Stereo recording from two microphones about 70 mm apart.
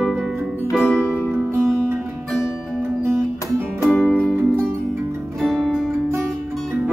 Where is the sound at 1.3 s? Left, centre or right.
Right.